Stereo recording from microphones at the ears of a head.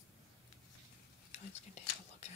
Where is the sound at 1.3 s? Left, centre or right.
Left.